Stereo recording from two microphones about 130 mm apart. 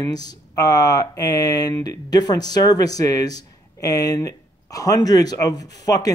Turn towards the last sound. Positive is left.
turn(degrees=30)  # may be behind; listen again after turning